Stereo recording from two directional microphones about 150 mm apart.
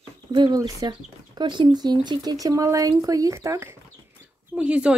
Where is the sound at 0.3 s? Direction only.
30° right (ahead or behind).